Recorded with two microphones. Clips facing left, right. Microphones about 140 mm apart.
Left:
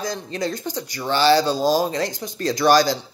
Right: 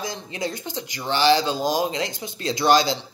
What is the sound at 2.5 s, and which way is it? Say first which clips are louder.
Speech: left 2 dB; 20° right (ahead or behind).